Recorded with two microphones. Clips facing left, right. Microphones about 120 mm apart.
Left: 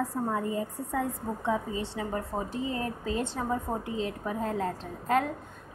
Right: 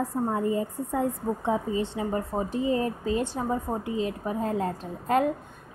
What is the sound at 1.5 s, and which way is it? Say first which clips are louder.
A woman's voice: right 3 dB; 25° right (ahead or behind).